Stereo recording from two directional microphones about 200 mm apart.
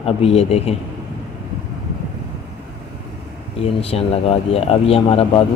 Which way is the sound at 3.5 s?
30° left (ahead or behind).